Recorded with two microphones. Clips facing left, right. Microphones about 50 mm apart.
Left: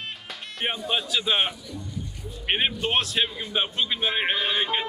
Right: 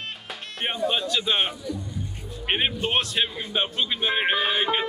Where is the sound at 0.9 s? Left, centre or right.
Centre.